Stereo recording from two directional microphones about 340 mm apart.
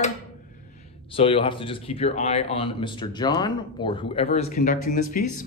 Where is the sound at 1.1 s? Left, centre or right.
Centre.